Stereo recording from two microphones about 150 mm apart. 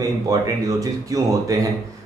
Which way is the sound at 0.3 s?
25° right (ahead or behind).